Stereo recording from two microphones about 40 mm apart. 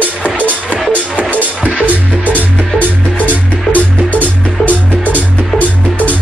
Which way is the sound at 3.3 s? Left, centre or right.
Left.